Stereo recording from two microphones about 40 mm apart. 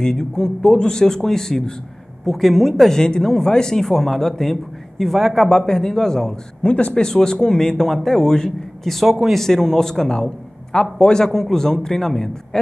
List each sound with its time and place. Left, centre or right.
0.0 s speech: centre
5.5 s a man's voice: centre